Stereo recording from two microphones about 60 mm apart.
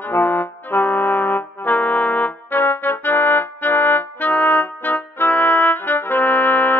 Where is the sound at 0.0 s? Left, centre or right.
Left.